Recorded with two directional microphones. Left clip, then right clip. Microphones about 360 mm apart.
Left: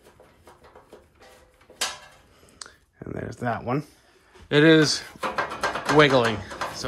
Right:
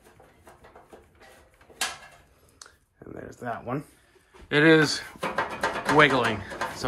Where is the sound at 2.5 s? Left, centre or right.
Left.